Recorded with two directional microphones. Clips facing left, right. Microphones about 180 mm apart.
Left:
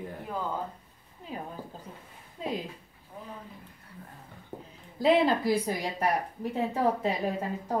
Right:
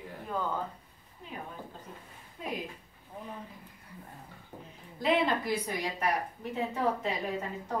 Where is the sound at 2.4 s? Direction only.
25° left (ahead or behind).